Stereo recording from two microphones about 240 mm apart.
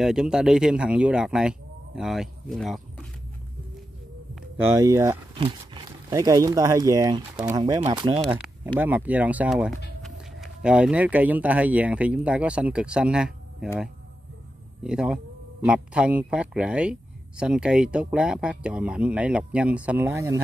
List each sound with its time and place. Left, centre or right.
0.0 s speech: centre
4.4 s speech: centre
8.7 s speech: centre